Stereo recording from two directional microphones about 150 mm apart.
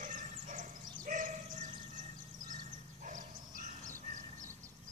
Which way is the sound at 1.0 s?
60° right (ahead or behind).